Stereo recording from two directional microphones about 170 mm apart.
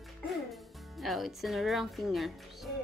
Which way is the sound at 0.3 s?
Centre (ahead or behind).